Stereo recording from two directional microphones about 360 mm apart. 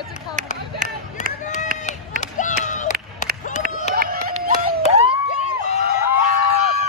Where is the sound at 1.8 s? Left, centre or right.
Left.